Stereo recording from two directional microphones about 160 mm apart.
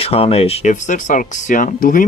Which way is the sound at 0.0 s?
35° left (ahead or behind).